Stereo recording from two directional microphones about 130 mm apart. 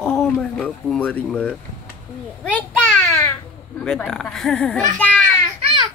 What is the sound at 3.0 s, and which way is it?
Babbling, 15° left (ahead or behind).